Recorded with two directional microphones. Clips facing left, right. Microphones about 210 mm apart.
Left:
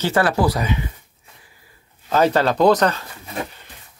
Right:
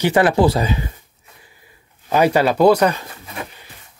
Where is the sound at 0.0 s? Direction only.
20° right (ahead or behind).